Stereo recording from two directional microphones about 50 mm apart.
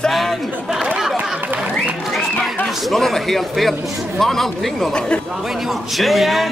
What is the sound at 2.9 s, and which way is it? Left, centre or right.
Speech, centre.